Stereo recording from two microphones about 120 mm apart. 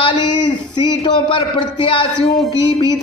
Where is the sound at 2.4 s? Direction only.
35° left (ahead or behind).